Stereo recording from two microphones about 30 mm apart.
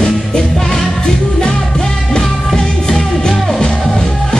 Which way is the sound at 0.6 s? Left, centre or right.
Centre.